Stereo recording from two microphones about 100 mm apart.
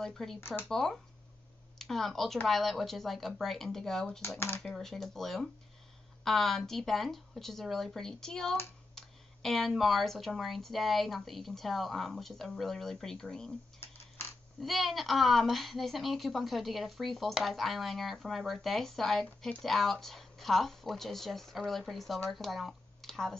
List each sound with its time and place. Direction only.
0.0 s a woman's voice: 5° left (ahead or behind)
0.4 s speech: 20° left (ahead or behind)
0.7 s a woman's voice: 5° left (ahead or behind)
14.6 s a woman's voice: centre (ahead or behind)